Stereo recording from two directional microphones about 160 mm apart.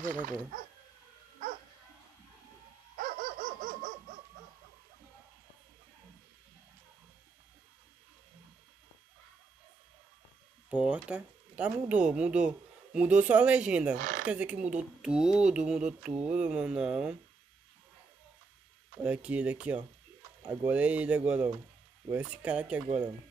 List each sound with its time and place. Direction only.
0.0 s speech: 55° right (ahead or behind)
3.0 s dog: 60° right (ahead or behind)
10.7 s speech: 5° right (ahead or behind)
13.9 s speech: 60° right (ahead or behind)
14.2 s speech: 10° right (ahead or behind)
19.0 s speech: 10° right (ahead or behind)